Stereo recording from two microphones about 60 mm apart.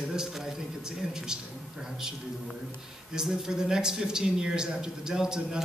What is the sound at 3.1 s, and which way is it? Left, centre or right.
A man's voice, centre.